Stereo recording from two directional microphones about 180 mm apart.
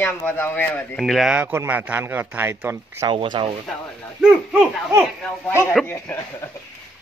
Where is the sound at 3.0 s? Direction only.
25° right (ahead or behind).